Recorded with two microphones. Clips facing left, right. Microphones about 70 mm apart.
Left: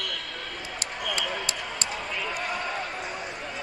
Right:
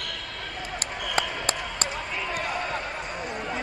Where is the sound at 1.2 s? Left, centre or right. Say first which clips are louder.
Right 7 dB; right.